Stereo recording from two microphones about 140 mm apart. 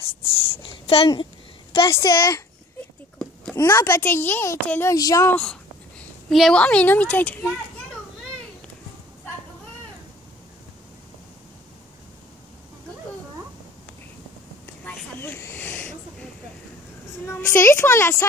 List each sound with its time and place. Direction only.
0.5 s speech: 40° left (ahead or behind)
1.9 s speech: 25° left (ahead or behind)
3.5 s a child's voice: 20° left (ahead or behind)
5.4 s a woman's voice: 5° left (ahead or behind)
14.9 s a sound: 10° left (ahead or behind)
17.3 s a woman's voice: 20° left (ahead or behind)